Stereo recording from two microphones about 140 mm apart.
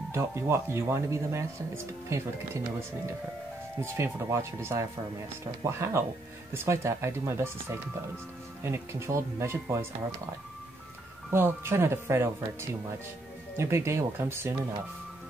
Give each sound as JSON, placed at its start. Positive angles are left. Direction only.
{"t": 0.1, "sound": "speech", "side_deg": -20}
{"t": 3.8, "sound": "speech", "side_deg": -20}
{"t": 11.2, "sound": "speech", "side_deg": -15}